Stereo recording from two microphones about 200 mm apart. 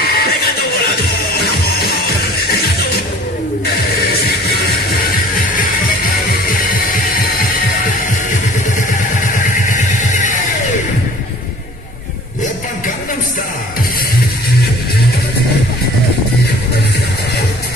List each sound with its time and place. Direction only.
0.0 s music: 50° left (ahead or behind)